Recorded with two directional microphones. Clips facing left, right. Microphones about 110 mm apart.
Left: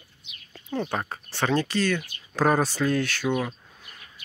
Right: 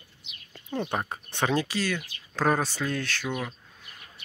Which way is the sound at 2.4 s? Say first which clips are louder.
Left 3 dB; 5° left (ahead or behind).